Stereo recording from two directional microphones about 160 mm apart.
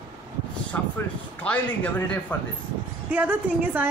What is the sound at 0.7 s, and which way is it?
Speech, 15° left (ahead or behind).